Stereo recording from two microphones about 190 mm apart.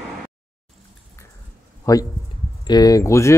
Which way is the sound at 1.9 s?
15° left (ahead or behind).